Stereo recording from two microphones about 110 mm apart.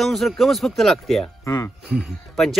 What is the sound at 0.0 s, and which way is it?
Speech, centre (ahead or behind).